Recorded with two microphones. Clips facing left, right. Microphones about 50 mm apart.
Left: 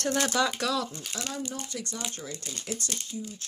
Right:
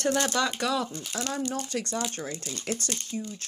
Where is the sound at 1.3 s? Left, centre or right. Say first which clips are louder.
Right 6 dB; right.